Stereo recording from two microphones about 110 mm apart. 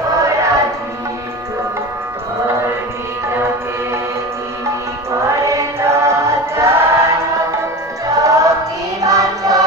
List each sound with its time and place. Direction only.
0.1 s music: 30° right (ahead or behind)
5.2 s choir: 25° right (ahead or behind)
8.1 s music: 30° right (ahead or behind)